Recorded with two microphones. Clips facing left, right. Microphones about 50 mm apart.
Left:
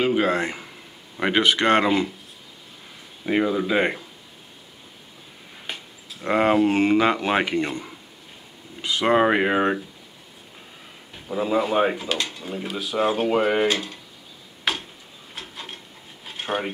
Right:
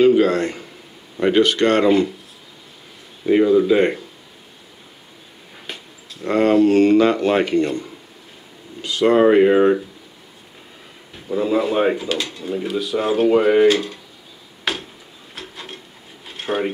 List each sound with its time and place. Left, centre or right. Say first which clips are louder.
0.0 s a man's voice: right 7 dB; centre
1.2 s speech: right 4 dB; left
3.3 s speech: right 8 dB; centre
5.7 s speech: even; centre
11.1 s speech: right 4 dB; centre
14.6 s a sound: right 2 dB; centre
15.3 s wood: right 2 dB; centre
16.3 s a sound: right 4 dB; centre